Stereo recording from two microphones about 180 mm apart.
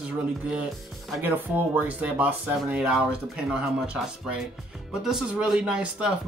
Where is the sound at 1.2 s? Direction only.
10° right (ahead or behind).